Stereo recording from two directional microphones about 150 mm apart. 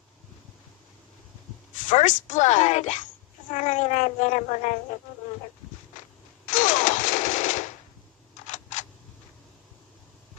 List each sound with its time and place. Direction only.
1.9 s speech: 55° left (ahead or behind)
6.4 s machine gun: 60° left (ahead or behind)
8.5 s camera: 55° left (ahead or behind)